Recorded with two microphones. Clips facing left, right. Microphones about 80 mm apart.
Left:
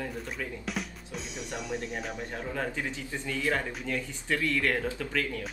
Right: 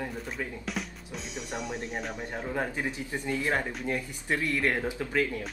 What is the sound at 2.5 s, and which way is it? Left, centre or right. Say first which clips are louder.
Speech: right 2 dB; centre.